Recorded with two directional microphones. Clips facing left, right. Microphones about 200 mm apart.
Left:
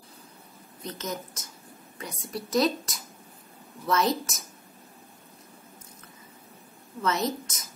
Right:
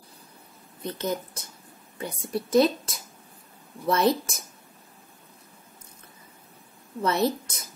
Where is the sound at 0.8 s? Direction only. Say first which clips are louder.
Right 5 dB; 30° right (ahead or behind).